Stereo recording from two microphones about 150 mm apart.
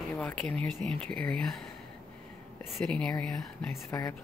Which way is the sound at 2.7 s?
5° left (ahead or behind).